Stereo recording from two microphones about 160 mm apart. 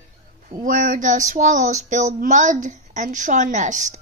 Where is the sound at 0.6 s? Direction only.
55° right (ahead or behind).